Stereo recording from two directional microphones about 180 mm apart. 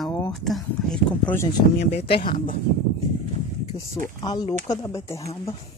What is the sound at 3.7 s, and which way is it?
Speech, 35° left (ahead or behind).